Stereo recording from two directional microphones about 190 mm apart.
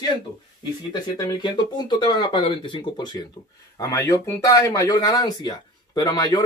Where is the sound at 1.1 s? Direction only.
20° left (ahead or behind).